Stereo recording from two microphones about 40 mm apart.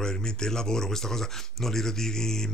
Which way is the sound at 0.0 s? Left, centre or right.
Centre.